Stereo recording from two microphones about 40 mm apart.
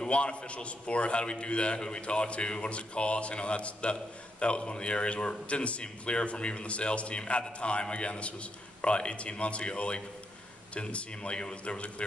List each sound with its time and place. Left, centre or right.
0.1 s a man's voice: left